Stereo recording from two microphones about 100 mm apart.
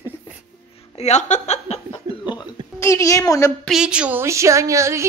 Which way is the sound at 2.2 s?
50° left (ahead or behind).